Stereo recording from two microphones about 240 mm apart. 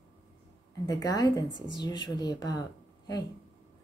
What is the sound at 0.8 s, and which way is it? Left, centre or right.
A woman's voice, centre.